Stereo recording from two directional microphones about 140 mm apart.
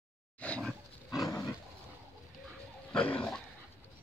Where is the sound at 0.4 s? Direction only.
5° left (ahead or behind).